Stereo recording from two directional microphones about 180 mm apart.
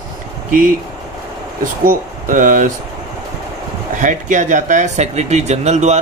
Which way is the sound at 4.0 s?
45° right (ahead or behind).